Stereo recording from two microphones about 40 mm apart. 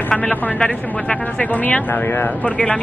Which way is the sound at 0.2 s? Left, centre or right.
Left.